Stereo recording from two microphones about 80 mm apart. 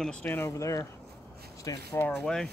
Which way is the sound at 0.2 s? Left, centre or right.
Left.